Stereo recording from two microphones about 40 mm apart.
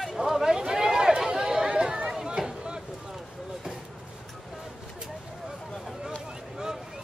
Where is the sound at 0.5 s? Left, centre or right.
Centre.